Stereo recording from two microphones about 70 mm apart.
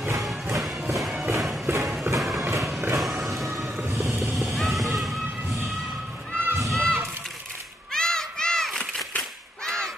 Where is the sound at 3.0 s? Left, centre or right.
Centre.